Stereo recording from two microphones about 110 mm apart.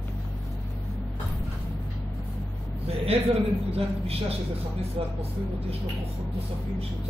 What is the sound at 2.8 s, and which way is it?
A man's voice, 65° right (ahead or behind).